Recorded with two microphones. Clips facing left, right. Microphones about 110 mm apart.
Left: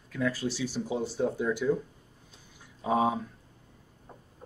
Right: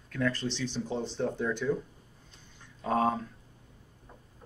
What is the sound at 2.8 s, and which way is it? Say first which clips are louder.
Speech: left 1 dB; 10° left (ahead or behind).